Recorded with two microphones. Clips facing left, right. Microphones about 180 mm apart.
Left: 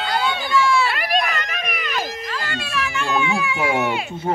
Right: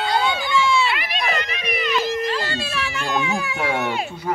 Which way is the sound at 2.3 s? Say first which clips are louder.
Right 2 dB; 30° right (ahead or behind).